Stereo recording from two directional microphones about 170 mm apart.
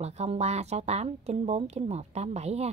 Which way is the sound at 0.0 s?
40° right (ahead or behind).